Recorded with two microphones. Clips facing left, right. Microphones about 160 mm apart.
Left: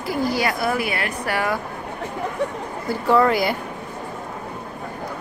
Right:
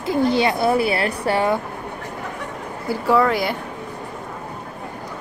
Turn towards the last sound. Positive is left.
turn(degrees=0)  # may be behind; listen again after turning